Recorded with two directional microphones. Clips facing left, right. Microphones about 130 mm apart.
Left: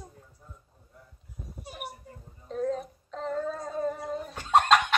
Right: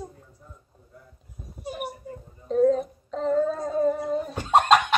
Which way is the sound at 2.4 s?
5° right (ahead or behind).